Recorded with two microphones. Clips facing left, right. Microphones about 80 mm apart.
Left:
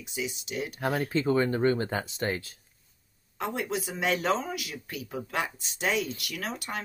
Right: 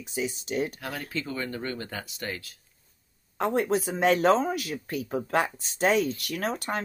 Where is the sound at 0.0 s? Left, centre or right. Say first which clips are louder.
Right 3 dB; right.